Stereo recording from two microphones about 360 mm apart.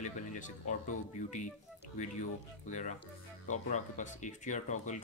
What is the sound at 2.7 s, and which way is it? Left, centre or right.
Speech, centre.